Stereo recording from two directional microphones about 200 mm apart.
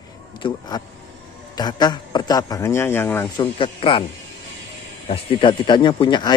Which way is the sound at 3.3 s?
25° left (ahead or behind).